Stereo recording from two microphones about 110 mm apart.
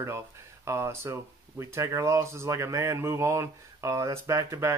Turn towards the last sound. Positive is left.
turn(degrees=-25)  # may be behind; listen again after turning